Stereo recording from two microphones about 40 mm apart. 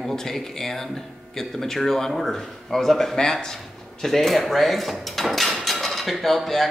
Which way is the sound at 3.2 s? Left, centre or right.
Centre.